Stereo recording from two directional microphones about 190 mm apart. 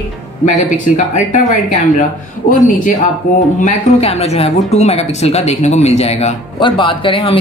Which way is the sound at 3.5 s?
35° left (ahead or behind).